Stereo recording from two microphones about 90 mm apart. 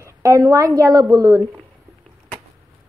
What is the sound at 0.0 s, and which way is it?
A woman's voice, 35° right (ahead or behind).